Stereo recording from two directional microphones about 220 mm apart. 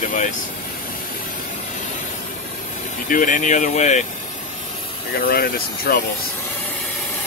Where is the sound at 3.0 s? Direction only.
35° left (ahead or behind).